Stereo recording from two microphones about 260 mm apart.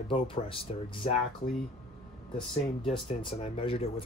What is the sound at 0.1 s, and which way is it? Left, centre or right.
Speech, left.